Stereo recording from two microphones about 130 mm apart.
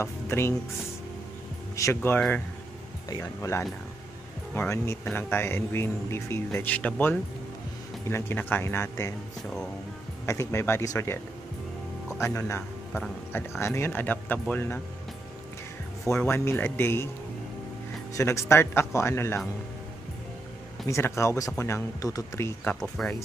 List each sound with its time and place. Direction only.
0.0 s speech: 20° left (ahead or behind)
2.0 s speech: 10° left (ahead or behind)
10.2 s speech: 20° left (ahead or behind)
12.2 s a man's voice: 20° left (ahead or behind)
16.2 s speech: 20° left (ahead or behind)
18.1 s speech: 20° left (ahead or behind)
20.9 s speech: 20° left (ahead or behind)
22.8 s speech: 5° left (ahead or behind)